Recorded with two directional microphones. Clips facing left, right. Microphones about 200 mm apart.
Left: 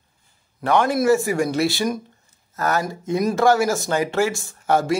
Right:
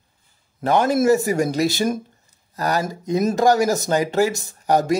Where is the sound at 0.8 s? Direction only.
25° right (ahead or behind).